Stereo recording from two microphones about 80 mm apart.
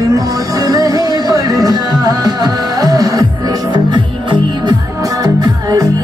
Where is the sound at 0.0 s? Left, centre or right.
Right.